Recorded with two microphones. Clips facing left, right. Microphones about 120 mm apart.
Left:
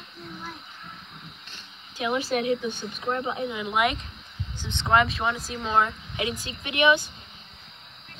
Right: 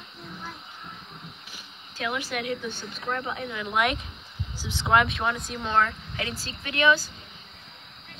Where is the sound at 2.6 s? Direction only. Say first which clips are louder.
Left 3 dB; 20° left (ahead or behind).